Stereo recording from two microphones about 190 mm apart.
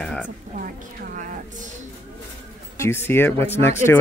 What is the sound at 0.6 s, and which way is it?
A woman's voice, 45° right (ahead or behind).